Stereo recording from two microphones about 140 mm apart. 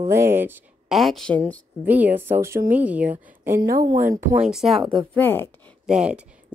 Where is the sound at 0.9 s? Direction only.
Centre (ahead or behind).